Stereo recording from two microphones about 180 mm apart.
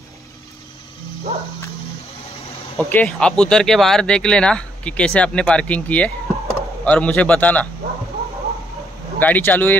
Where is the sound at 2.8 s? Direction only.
10° left (ahead or behind).